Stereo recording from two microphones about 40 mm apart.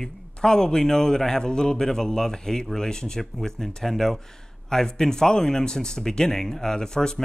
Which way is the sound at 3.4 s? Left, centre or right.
Centre.